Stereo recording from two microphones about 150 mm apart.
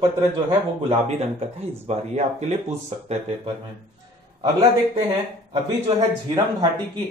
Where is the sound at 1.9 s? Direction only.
50° right (ahead or behind).